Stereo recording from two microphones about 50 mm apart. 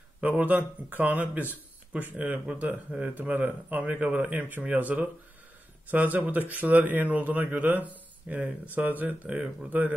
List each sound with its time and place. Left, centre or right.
0.2 s speech: right
3.3 s speech: right
3.8 s speech: right